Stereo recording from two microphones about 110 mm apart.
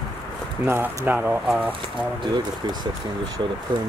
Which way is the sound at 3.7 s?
45° right (ahead or behind).